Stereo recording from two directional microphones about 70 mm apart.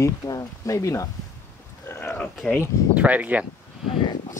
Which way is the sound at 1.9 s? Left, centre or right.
Left.